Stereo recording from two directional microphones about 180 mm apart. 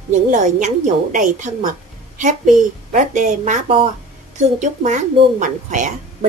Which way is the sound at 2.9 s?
40° right (ahead or behind).